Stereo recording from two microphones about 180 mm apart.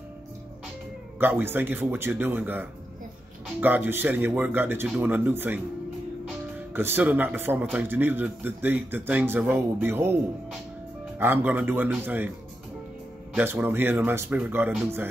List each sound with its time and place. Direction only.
1.2 s a man's voice: 10° right (ahead or behind)
6.7 s a man's voice: 10° right (ahead or behind)
11.1 s a man's voice: 10° right (ahead or behind)
13.3 s a man's voice: 10° right (ahead or behind)